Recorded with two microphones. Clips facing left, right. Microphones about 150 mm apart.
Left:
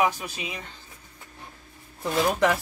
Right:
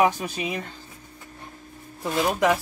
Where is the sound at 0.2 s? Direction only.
55° right (ahead or behind).